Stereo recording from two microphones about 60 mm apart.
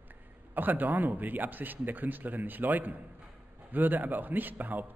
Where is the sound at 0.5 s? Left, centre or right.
Right.